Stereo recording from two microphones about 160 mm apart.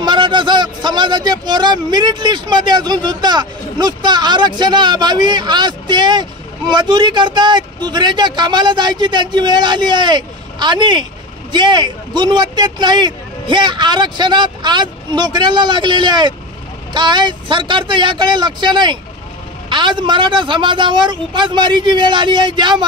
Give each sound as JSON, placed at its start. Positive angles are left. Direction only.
{"t": 0.0, "sound": "a man's voice", "side_deg": -30}